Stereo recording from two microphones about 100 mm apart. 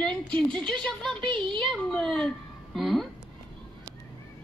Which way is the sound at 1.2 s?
55° right (ahead or behind).